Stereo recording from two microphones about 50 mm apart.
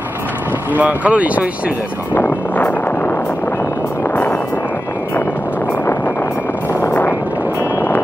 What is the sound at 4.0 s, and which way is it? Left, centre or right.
Music, left.